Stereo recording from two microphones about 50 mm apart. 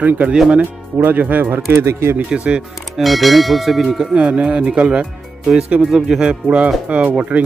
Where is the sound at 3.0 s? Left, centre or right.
Centre.